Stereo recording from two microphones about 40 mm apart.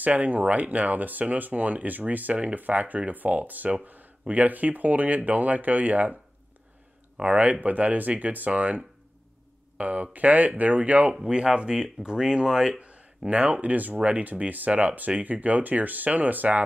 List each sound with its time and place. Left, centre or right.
0.0 s speech: right
7.2 s speech: right
11.2 s speech: right
12.7 s a sound: right
13.3 s speech: right